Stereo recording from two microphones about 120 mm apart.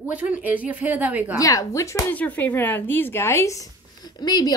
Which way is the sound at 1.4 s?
30° left (ahead or behind).